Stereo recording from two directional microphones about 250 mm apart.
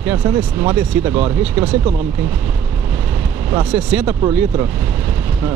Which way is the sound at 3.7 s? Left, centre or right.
Centre.